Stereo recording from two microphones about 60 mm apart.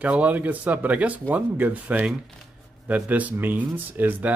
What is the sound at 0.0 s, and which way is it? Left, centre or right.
Speech, right.